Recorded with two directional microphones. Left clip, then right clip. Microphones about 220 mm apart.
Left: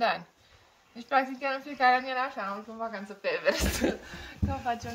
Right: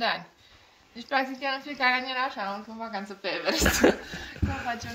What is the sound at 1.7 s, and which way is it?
Speech, 25° left (ahead or behind).